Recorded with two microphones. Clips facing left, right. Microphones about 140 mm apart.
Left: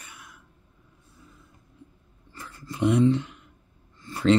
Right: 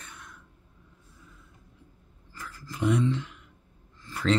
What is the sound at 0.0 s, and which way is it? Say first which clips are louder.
Throat clearing: right 1 dB; 10° left (ahead or behind).